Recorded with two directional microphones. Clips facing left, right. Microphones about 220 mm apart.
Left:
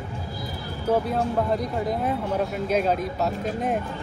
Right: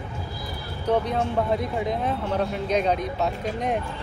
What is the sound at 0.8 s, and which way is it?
Speech, 5° left (ahead or behind).